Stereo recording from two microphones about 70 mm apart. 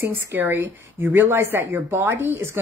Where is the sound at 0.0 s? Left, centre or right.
Right.